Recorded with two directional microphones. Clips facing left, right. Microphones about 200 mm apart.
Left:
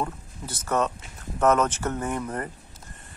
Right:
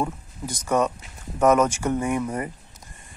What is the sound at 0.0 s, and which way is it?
Speech, 10° right (ahead or behind).